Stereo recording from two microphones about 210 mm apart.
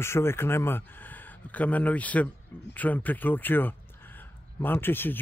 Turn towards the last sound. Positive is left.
turn(degrees=10)  # may be behind; listen again after turning